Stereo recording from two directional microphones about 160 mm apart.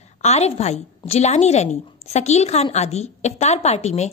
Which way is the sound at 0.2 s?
45° left (ahead or behind).